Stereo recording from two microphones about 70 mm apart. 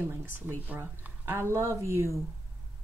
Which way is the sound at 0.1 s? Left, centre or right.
Right.